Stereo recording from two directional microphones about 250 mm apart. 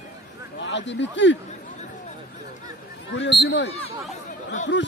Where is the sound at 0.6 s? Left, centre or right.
Left.